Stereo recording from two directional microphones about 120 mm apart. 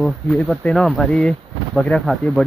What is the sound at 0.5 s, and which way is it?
Speech, 5° left (ahead or behind).